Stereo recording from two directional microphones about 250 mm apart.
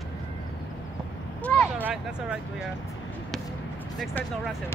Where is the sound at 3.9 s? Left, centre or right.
Centre.